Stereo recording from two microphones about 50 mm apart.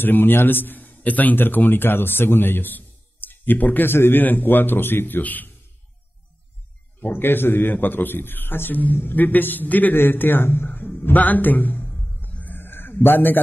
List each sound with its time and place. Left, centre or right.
0.0 s a man's voice: left
7.0 s a man's voice: left
12.5 s a sound: left